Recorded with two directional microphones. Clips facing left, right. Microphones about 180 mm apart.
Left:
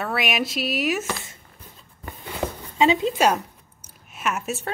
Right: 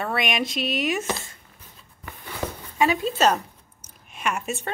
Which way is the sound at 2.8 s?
20° left (ahead or behind).